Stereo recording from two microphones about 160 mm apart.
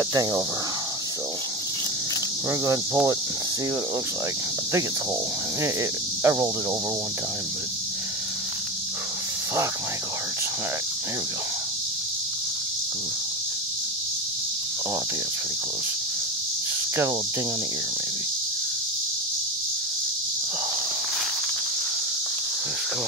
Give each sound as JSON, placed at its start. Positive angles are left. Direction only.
{"t": 0.1, "sound": "speech", "side_deg": -25}
{"t": 2.6, "sound": "speech", "side_deg": -20}
{"t": 5.6, "sound": "speech", "side_deg": -15}